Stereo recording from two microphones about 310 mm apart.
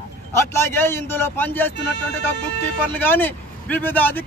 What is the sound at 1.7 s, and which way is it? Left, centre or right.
Speech, left.